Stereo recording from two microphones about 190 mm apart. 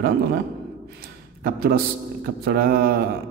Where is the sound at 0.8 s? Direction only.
55° right (ahead or behind).